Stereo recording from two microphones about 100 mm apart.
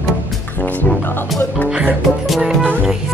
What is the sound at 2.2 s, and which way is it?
Speech, centre (ahead or behind).